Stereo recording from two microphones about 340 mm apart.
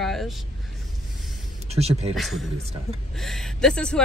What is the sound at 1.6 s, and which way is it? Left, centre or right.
Speech, centre.